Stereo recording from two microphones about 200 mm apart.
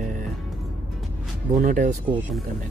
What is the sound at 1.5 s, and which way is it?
Speech, 40° right (ahead or behind).